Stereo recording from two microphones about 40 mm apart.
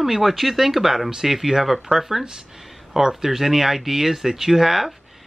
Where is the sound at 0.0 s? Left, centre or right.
Centre.